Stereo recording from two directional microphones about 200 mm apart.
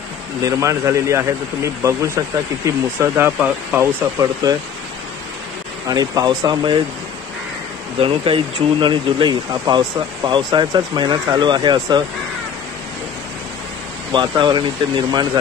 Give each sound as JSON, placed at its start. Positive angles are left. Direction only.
{"t": 0.4, "sound": "speech", "side_deg": -15}
{"t": 5.9, "sound": "speech", "side_deg": -20}
{"t": 8.0, "sound": "speech", "side_deg": -25}
{"t": 14.1, "sound": "speech", "side_deg": -20}